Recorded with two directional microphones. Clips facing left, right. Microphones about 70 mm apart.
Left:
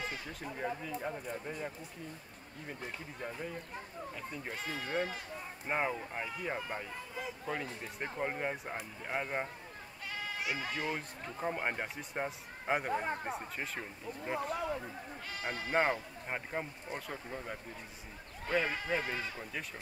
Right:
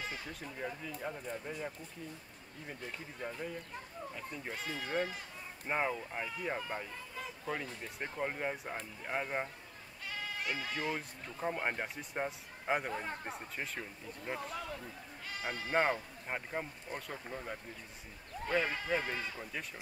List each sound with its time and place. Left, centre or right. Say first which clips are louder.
0.0 s a sound: left 2 dB; centre
1.0 s speech: right 2 dB; centre
3.2 s speech: right 1 dB; centre
10.0 s sheep: left 1 dB; centre
10.7 s speech: even; centre
12.9 s speech: left 5 dB; left
13.4 s speech: left 1 dB; centre
14.6 s speech: left 6 dB; left
15.7 s speech: even; centre